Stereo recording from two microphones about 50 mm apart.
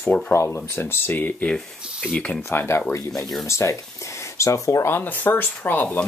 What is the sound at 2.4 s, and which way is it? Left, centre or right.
Speech, left.